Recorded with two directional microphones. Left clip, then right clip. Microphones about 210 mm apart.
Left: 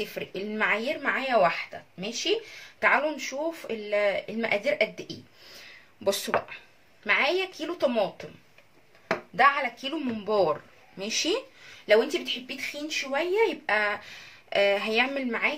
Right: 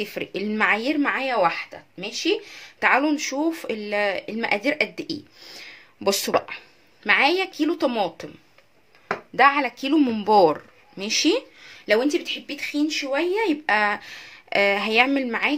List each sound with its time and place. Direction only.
0.0 s speech: 45° right (ahead or behind)
9.3 s speech: 50° right (ahead or behind)